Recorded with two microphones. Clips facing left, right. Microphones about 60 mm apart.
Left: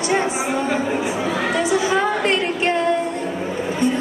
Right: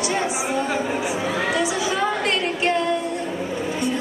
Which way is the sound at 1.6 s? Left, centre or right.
Left.